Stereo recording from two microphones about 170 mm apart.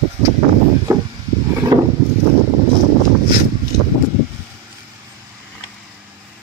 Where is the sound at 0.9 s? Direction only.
20° right (ahead or behind).